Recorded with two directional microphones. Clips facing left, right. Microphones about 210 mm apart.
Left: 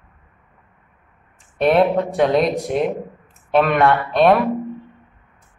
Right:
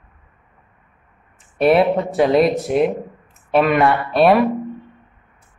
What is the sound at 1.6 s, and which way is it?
A woman's voice, 5° right (ahead or behind).